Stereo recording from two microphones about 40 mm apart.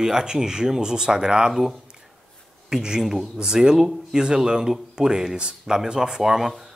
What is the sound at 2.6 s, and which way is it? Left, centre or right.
Speech, centre.